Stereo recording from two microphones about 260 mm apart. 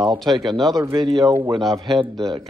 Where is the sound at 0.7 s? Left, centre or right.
Centre.